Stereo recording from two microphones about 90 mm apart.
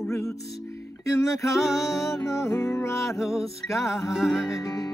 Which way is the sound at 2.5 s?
35° left (ahead or behind).